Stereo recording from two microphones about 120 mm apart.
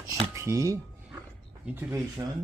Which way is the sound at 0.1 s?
25° right (ahead or behind).